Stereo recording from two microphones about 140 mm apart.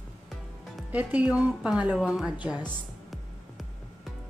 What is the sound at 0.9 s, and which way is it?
A woman's voice, 10° right (ahead or behind).